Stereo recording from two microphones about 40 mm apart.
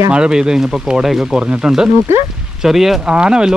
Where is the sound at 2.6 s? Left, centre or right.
Centre.